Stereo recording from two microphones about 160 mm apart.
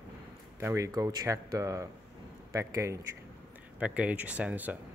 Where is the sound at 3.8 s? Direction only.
10° right (ahead or behind).